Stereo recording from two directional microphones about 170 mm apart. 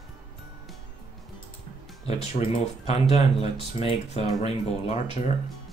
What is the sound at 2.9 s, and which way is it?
Speech, 35° left (ahead or behind).